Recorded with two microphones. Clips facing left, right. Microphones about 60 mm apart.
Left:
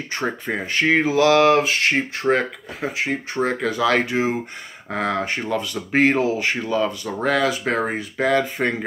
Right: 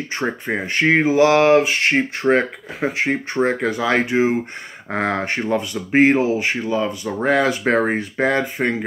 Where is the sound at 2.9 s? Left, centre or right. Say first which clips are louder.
Right 2 dB; right.